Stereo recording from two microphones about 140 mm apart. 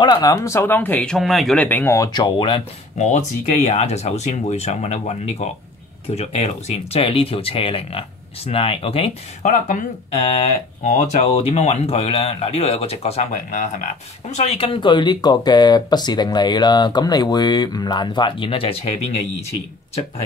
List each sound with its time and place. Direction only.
0.0 s speech: 30° left (ahead or behind); by 1.6 s centre (ahead or behind)
1.6 s speech: 15° left (ahead or behind)
2.1 s speech: 30° left (ahead or behind)
3.6 s speech: 50° left (ahead or behind)
9.4 s speech: 65° left (ahead or behind); by 13.2 s 45° left (ahead or behind)
13.3 s speech: 70° left (ahead or behind)
14.3 s speech: 50° left (ahead or behind)